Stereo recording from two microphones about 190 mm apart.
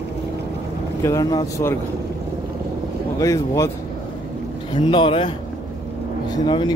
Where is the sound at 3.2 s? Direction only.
15° left (ahead or behind).